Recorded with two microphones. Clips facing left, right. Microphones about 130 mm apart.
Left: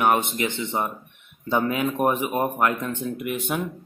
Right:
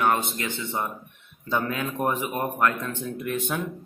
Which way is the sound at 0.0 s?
20° left (ahead or behind).